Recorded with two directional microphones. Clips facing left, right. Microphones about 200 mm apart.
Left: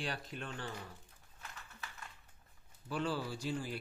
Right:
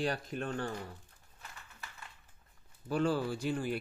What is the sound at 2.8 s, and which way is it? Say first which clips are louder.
Speech: right 6 dB; 45° right (ahead or behind).